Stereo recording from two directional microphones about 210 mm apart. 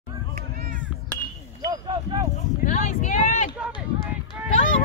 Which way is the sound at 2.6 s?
35° left (ahead or behind).